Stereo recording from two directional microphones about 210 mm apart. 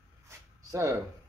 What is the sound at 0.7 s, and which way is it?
Speech, 15° right (ahead or behind).